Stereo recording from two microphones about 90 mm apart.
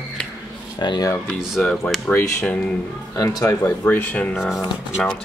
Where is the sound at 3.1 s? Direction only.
40° left (ahead or behind).